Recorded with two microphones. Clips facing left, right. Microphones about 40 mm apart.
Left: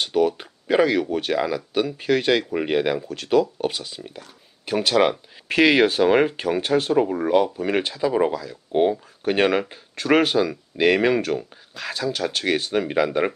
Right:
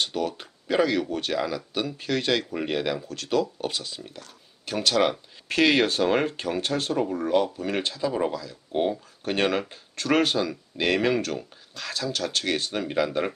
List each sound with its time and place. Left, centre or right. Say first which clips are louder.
0.0 s speech: left 7 dB; centre